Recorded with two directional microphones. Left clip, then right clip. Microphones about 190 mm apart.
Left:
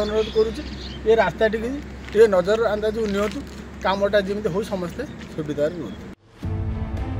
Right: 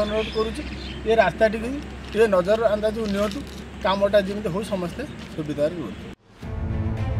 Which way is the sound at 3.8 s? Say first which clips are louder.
Even; 5° left (ahead or behind).